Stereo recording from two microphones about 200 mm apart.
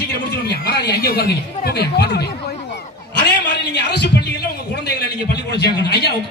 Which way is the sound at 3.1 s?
60° left (ahead or behind).